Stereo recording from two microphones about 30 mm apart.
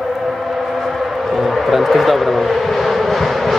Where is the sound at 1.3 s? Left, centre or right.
Centre.